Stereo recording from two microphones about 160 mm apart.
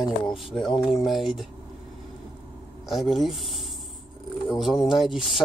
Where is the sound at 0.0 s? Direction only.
30° left (ahead or behind).